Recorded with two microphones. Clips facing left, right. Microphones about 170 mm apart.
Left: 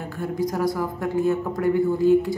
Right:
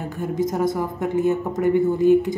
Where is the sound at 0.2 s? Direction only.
20° right (ahead or behind).